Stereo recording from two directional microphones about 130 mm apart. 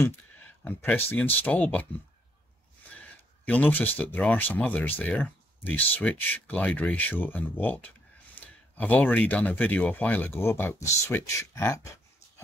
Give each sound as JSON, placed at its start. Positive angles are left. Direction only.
{"t": 0.0, "sound": "speech", "side_deg": 15}
{"t": 3.4, "sound": "speech", "side_deg": 10}